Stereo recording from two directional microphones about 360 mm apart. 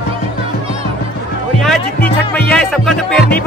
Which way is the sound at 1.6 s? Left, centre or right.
Centre.